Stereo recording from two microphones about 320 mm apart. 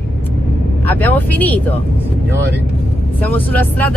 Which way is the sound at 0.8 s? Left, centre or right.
Centre.